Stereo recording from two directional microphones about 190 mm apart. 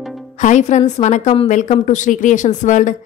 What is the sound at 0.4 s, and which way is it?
A woman's voice, 40° left (ahead or behind).